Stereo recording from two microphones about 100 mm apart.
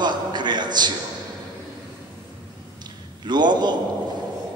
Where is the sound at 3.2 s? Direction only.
50° right (ahead or behind).